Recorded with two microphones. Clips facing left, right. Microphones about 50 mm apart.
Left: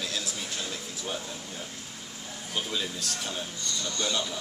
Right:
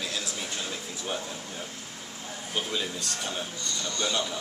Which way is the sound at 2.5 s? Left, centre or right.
Centre.